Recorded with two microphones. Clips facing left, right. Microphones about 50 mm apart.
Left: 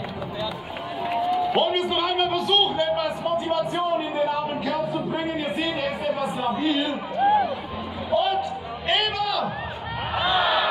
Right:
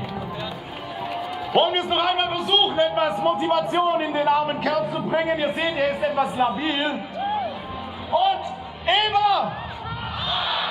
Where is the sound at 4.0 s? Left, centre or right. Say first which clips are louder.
Right 4 dB; right.